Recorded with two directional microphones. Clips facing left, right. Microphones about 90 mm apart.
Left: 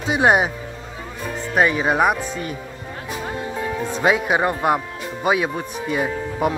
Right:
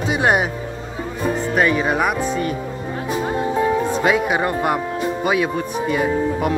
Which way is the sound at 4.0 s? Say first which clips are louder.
Right 1 dB; 25° left (ahead or behind).